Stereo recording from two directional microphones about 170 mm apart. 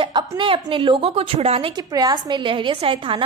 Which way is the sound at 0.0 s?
25° right (ahead or behind).